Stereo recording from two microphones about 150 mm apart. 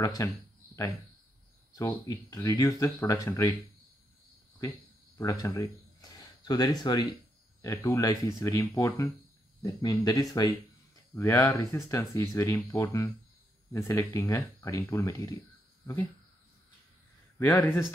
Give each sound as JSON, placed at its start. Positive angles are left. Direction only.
{"t": 0.2, "sound": "speech", "side_deg": 20}
{"t": 1.8, "sound": "speech", "side_deg": 20}
{"t": 4.6, "sound": "speech", "side_deg": 20}
{"t": 17.4, "sound": "speech", "side_deg": 15}